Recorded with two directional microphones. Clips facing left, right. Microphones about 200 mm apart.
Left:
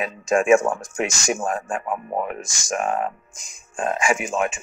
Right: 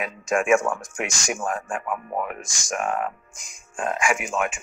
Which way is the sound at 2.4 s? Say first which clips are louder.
Left 2 dB; 5° left (ahead or behind).